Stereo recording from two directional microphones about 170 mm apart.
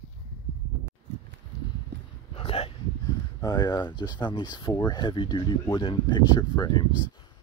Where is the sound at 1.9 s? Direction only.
90° right.